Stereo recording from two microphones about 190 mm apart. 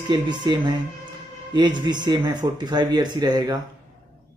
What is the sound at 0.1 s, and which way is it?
Speech, 25° right (ahead or behind).